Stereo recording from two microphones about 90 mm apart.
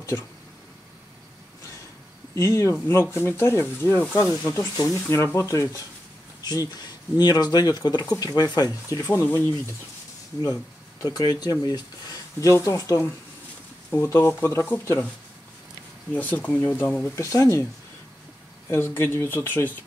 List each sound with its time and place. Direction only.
2.3 s speech: 35° left (ahead or behind)
4.7 s speech: 35° left (ahead or behind)
9.2 s speech: 25° left (ahead or behind)
11.0 s speech: 45° left (ahead or behind)
14.0 s speech: 30° left (ahead or behind)
16.1 s speech: 20° left (ahead or behind)
17.1 s speech: 35° left (ahead or behind)
18.7 s speech: 25° left (ahead or behind)